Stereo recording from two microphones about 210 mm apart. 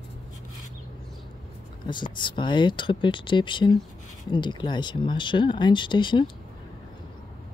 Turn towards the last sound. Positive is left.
turn(degrees=20)  # may be behind; listen again after turning